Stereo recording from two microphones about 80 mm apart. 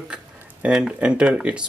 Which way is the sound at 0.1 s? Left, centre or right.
Centre.